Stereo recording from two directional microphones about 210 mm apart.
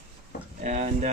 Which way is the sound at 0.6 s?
35° right (ahead or behind).